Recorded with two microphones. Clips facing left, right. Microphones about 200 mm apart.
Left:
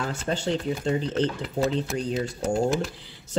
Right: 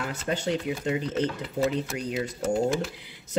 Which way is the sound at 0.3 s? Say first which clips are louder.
Left 1 dB; 30° left (ahead or behind).